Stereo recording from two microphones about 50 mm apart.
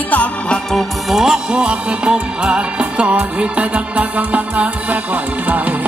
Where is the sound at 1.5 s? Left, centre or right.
Right.